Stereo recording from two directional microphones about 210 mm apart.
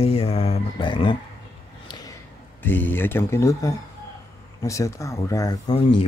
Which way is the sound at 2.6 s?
10° left (ahead or behind).